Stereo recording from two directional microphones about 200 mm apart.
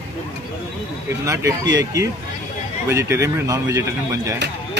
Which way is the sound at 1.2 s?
15° right (ahead or behind).